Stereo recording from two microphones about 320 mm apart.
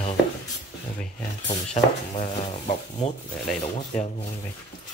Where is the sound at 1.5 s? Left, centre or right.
Centre.